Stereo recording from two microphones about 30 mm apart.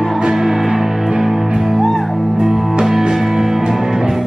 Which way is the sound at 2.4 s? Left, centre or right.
Centre.